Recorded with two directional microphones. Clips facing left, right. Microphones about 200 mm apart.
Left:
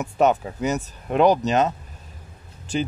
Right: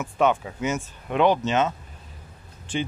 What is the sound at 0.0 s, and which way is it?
Speech, 40° left (ahead or behind).